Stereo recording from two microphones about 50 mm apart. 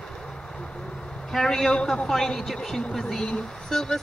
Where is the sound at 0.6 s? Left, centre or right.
Centre.